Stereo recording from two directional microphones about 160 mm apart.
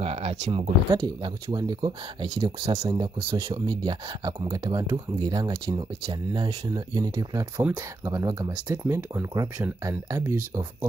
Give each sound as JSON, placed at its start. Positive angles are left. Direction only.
{"t": 0.0, "sound": "speech", "side_deg": -40}
{"t": 3.3, "sound": "speech", "side_deg": -35}